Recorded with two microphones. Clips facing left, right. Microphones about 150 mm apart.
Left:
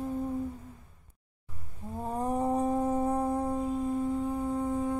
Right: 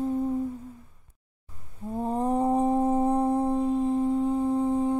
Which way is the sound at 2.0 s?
30° right (ahead or behind).